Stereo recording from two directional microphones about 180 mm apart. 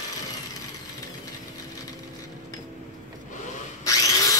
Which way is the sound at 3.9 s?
20° left (ahead or behind).